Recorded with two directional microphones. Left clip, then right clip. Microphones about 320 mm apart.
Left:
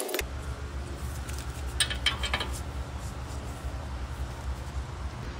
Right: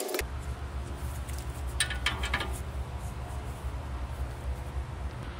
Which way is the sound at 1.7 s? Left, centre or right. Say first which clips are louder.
Left 3 dB; centre.